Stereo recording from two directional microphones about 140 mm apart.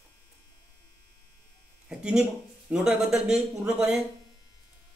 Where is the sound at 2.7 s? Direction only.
5° right (ahead or behind).